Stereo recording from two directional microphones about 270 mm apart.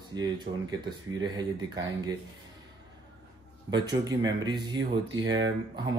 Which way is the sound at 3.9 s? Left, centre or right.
Centre.